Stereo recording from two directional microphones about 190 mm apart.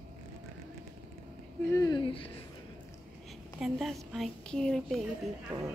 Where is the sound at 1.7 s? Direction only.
20° left (ahead or behind).